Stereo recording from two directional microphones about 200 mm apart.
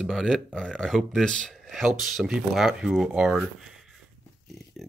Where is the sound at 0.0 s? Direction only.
Centre (ahead or behind).